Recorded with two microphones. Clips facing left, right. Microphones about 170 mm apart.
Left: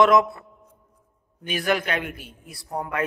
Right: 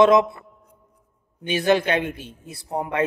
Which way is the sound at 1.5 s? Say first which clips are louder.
Right 5 dB; 25° right (ahead or behind).